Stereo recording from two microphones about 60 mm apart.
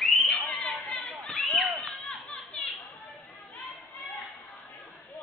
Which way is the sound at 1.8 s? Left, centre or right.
Centre.